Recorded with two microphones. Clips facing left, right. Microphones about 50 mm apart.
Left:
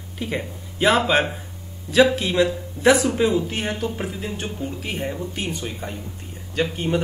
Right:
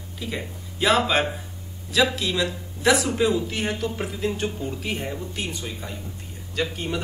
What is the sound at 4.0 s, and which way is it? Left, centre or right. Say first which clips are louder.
Speech: right 2 dB; centre.